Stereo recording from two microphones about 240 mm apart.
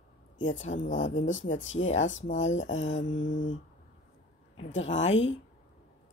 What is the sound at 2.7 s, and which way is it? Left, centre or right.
Mantra, left.